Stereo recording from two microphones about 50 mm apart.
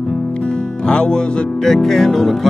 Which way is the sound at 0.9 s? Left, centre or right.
Centre.